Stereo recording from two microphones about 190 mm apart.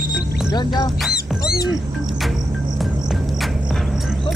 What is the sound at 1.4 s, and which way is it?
Music, 55° left (ahead or behind).